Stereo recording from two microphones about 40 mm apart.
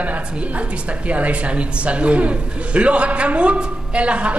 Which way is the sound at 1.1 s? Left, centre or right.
Right.